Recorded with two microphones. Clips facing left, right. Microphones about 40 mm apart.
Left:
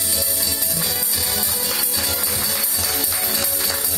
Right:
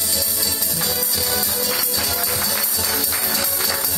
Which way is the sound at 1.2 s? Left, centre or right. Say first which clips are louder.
Right 2 dB; centre.